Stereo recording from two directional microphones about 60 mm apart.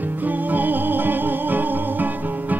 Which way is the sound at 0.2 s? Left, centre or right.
Right.